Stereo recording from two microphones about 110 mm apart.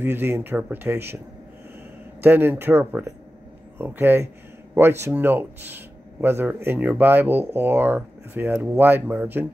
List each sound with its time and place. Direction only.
0.0 s speech: 20° right (ahead or behind)
2.2 s speech: 20° right (ahead or behind)